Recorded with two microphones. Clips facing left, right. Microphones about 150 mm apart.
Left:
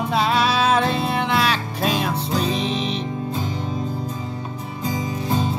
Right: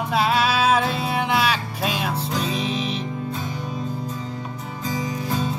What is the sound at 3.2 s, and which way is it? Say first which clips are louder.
Music: left 3 dB; 30° left (ahead or behind).